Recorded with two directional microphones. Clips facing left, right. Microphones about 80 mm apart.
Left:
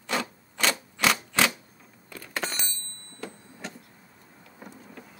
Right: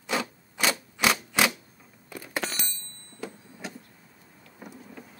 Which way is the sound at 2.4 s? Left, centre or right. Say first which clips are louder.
Even; centre.